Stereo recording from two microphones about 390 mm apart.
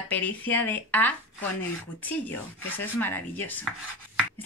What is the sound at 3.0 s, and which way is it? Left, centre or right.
Speech, centre.